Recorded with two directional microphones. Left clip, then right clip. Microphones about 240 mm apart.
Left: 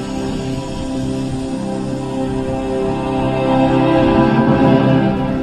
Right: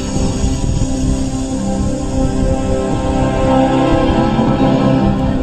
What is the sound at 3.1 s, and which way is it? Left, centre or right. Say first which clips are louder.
Music: right 3 dB; right.